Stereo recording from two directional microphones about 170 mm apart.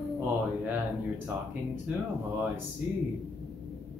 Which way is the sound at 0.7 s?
10° right (ahead or behind).